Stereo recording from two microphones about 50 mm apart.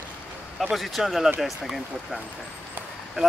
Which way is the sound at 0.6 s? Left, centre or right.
Centre.